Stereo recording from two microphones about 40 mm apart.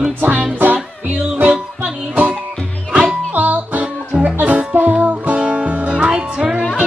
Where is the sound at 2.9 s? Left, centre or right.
Centre.